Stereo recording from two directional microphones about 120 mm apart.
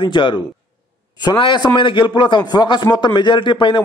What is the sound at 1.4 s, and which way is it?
A man's voice, 40° left (ahead or behind).